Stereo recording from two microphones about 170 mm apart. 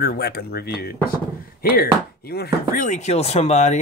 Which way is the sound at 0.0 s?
65° left (ahead or behind).